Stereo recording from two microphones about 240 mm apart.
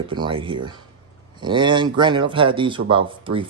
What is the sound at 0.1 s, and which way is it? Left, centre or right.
Speech, centre.